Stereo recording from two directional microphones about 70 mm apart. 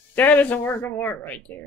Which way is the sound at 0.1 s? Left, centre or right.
Left.